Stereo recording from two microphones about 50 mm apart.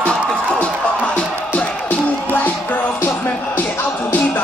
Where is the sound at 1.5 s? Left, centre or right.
Left.